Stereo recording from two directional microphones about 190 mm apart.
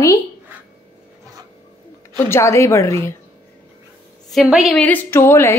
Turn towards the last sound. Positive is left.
turn(degrees=15)  # may be behind; listen again after turning